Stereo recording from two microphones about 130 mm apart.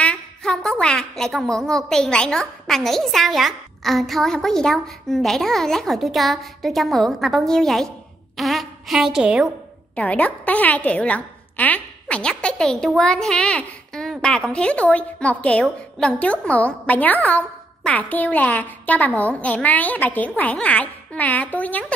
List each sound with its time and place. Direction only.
0.0 s a woman's voice: 5° left (ahead or behind)
9.9 s a woman's voice: 10° left (ahead or behind)